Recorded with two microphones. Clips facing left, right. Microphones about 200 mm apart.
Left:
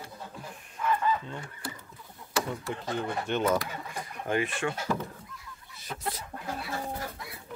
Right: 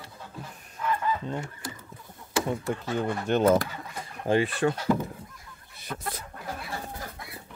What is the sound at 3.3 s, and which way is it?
Speech, 40° right (ahead or behind).